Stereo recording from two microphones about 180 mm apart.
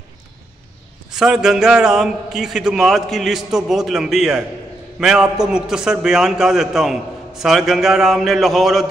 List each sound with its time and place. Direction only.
1.1 s a man's voice: 5° right (ahead or behind)